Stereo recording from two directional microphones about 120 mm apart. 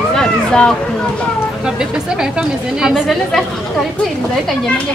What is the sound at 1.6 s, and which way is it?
Speech, 5° right (ahead or behind).